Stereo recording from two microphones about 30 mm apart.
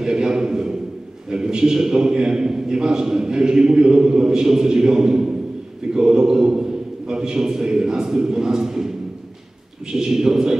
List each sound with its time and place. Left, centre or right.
0.0 s a sound: right
1.3 s a man's voice: right
4.3 s a man's voice: centre
9.9 s a man's voice: centre